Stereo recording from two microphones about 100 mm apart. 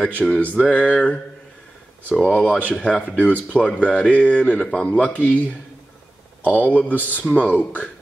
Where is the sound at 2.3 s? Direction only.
15° left (ahead or behind).